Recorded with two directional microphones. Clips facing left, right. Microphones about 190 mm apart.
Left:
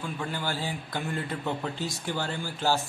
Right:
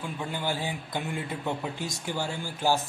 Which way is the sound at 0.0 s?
15° right (ahead or behind).